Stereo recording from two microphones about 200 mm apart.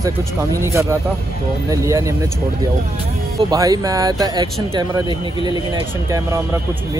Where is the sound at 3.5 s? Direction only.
15° right (ahead or behind).